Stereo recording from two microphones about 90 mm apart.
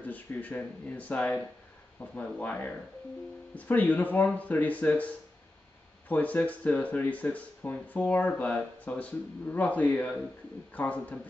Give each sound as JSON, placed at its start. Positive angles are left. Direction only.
{"t": 0.0, "sound": "speech", "side_deg": 20}